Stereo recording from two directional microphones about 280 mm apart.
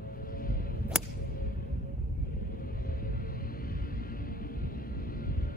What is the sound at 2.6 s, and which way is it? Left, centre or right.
Music, left.